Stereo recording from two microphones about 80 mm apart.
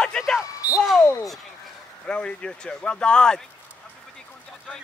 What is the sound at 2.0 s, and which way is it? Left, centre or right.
Speech, centre.